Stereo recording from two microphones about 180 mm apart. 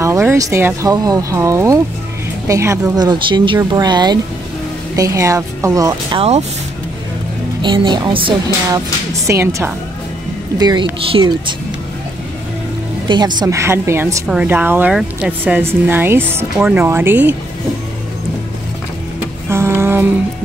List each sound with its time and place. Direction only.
0.0 s speech: 15° right (ahead or behind)
7.6 s speech: 25° right (ahead or behind)
8.7 s speech: 15° right (ahead or behind)
10.6 s speech: 25° right (ahead or behind)
13.1 s speech: 20° right (ahead or behind)
19.5 s music: 15° right (ahead or behind)